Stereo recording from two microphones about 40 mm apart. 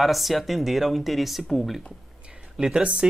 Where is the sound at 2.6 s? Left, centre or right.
Right.